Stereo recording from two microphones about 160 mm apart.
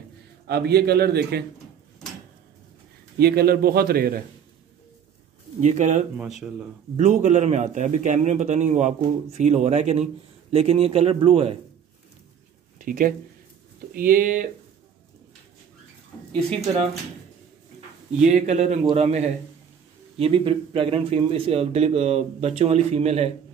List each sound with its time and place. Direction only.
0.5 s a man's voice: 90° right
3.2 s a man's voice: 75° right (ahead or behind)
5.6 s a man's voice: 50° right (ahead or behind)
6.1 s speech: 5° right (ahead or behind)
7.0 s a man's voice: 45° right (ahead or behind)
12.7 s speech: 55° right (ahead or behind)
18.3 s a man's voice: 45° right (ahead or behind)